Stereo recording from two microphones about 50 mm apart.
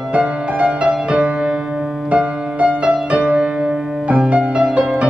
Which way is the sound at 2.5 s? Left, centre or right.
Right.